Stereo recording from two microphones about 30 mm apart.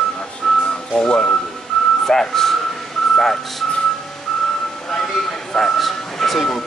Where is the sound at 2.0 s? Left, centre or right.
Centre.